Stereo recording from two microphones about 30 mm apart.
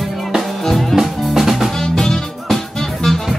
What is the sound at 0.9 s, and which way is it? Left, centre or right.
Music, centre.